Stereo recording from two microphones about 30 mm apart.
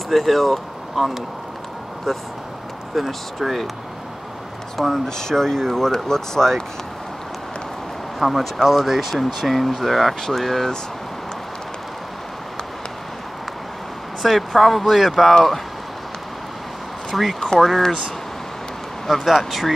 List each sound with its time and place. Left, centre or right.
0.1 s speech: centre
4.7 s speech: centre
8.2 s speech: centre
14.2 s speech: centre
17.1 s speech: centre
19.0 s speech: centre